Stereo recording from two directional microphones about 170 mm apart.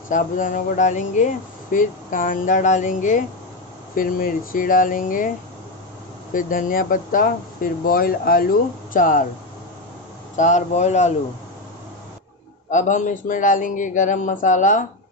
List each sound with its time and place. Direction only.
0.1 s speech: 50° left (ahead or behind)
6.3 s speech: 55° left (ahead or behind)
10.3 s speech: 45° left (ahead or behind)
12.7 s speech: 45° left (ahead or behind)